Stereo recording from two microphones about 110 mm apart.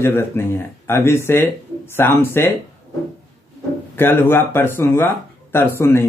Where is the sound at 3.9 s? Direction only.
20° left (ahead or behind).